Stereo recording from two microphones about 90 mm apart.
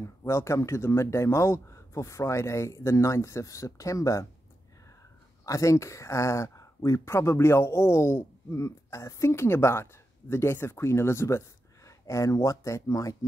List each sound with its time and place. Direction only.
0.0 s speech: 30° left (ahead or behind)
5.4 s speech: 35° left (ahead or behind)